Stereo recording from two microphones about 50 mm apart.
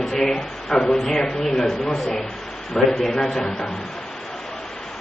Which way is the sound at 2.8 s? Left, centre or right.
Centre.